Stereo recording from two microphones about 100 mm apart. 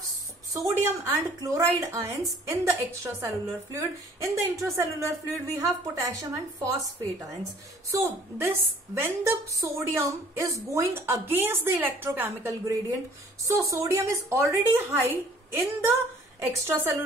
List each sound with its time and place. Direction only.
0.5 s a woman's voice: 35° right (ahead or behind)
7.9 s a woman's voice: 25° right (ahead or behind)